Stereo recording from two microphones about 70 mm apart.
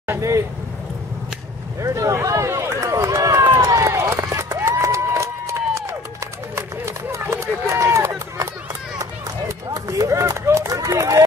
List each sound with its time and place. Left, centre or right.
0.2 s a sound: right
1.8 s run: right
9.7 s run: right